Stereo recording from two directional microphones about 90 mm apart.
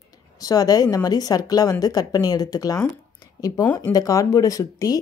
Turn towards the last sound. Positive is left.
turn(degrees=40)  # may be behind; listen again after turning